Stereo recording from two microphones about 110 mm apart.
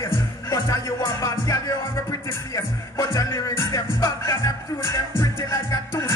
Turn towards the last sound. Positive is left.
turn(degrees=25)  # may be behind; listen again after turning